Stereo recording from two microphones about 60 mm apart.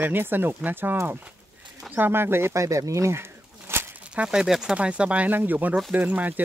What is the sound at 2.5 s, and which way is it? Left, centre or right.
Bird, right.